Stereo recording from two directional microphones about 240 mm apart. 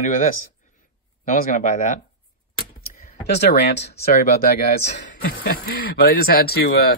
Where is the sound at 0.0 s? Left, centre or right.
Left.